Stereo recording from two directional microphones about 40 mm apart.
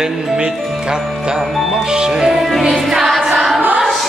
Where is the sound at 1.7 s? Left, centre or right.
Centre.